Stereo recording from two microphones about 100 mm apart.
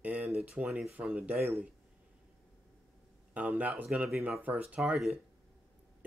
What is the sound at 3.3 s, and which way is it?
Speech, 15° right (ahead or behind).